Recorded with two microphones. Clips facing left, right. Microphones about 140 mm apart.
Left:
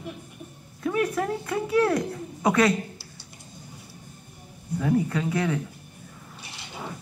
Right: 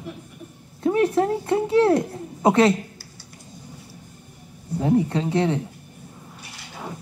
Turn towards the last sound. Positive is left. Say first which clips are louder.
# right 4 dB
turn(degrees=-30)  # may be behind; listen again after turning